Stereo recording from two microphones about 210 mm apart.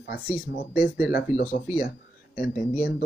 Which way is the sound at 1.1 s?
40° left (ahead or behind).